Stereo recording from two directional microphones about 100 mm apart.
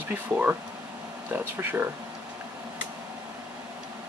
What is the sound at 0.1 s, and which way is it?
Speech, 15° right (ahead or behind).